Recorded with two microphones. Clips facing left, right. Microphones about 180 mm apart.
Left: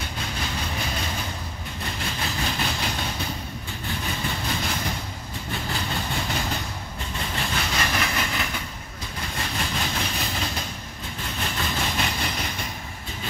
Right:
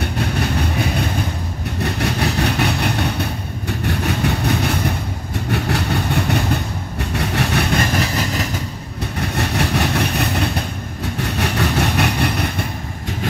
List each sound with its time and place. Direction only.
0.0 s vehicle: 65° right (ahead or behind)
5.5 s train: 70° right (ahead or behind)
7.9 s vehicle: 40° right (ahead or behind)
9.0 s vehicle: 70° right (ahead or behind)